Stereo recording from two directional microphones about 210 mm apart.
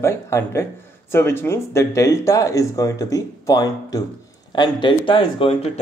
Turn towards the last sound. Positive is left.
turn(degrees=25)  # may be behind; listen again after turning